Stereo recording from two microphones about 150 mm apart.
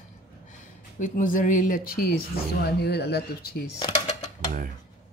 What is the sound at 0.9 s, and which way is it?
Speech, 60° left (ahead or behind).